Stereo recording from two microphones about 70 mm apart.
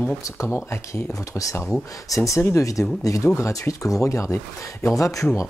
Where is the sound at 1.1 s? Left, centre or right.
Left.